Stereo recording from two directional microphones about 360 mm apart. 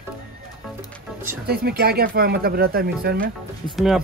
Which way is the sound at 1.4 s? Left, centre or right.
Right.